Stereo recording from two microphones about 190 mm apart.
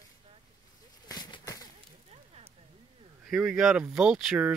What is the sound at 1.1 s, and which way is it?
Bird, 20° left (ahead or behind).